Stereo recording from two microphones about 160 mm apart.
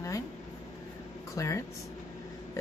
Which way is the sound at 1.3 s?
20° left (ahead or behind).